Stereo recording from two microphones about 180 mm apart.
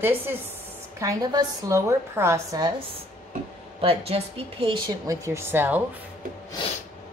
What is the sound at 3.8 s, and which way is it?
A woman's voice, 30° right (ahead or behind).